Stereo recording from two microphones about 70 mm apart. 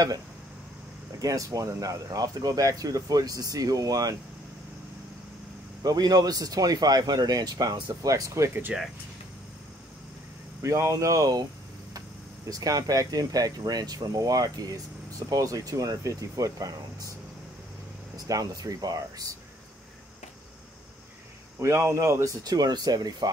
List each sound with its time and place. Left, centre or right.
1.2 s speech: right
5.8 s speech: right
8.7 s speech: centre
10.6 s speech: right
12.4 s speech: right
18.1 s speech: right
21.5 s speech: right
22.4 s speech: right